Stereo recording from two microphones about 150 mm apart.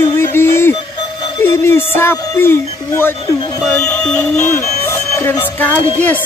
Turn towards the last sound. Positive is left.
turn(degrees=10)  # may be behind; listen again after turning